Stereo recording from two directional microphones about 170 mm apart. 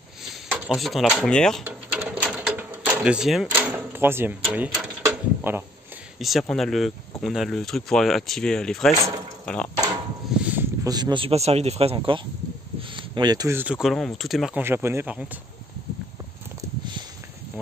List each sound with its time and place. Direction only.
0.3 s speech: centre (ahead or behind)
1.6 s a sound: 10° right (ahead or behind)
3.5 s speech: 10° right (ahead or behind)
5.0 s a sound: 15° right (ahead or behind)
6.1 s speech: centre (ahead or behind)
10.4 s a sound: 10° right (ahead or behind)
10.9 s speech: 25° right (ahead or behind)
13.6 s speech: 5° right (ahead or behind)
14.6 s speech: 15° right (ahead or behind)